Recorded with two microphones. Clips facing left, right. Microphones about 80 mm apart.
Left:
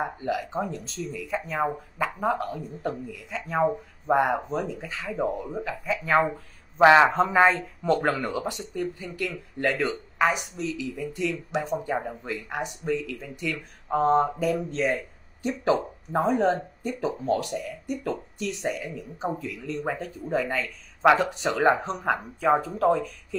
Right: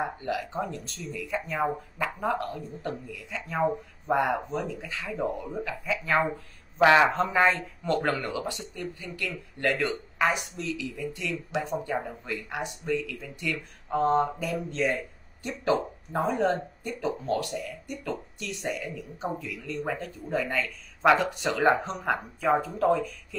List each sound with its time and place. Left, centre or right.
0.3 s speech: centre
6.8 s a man's voice: left
7.1 s speech: centre